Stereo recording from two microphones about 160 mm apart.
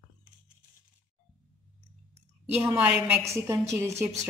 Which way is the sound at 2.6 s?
10° right (ahead or behind).